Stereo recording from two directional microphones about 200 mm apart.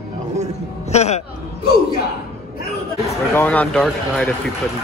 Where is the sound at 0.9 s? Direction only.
35° left (ahead or behind).